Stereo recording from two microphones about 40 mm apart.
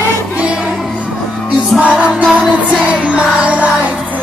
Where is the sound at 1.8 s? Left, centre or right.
Right.